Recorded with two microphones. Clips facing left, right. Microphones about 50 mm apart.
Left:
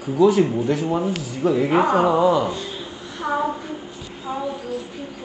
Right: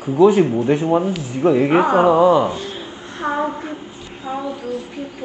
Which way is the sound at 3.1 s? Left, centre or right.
Right.